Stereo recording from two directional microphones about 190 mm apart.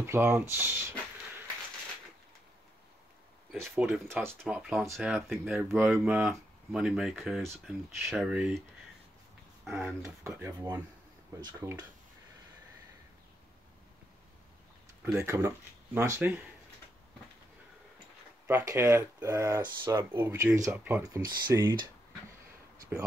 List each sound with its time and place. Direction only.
0.0 s speech: 10° right (ahead or behind)
3.7 s speech: 10° right (ahead or behind)
9.7 s speech: centre (ahead or behind)
10.0 s speech: 15° right (ahead or behind)
15.1 s speech: 15° right (ahead or behind)
18.5 s speech: 15° right (ahead or behind)
22.8 s a sound: 15° right (ahead or behind)